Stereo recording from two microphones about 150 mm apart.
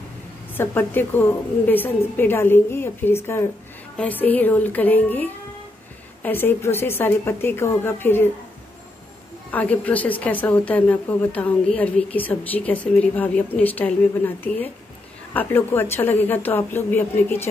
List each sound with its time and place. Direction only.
0.6 s a woman's voice: 15° left (ahead or behind)
9.5 s a woman's voice: 10° left (ahead or behind)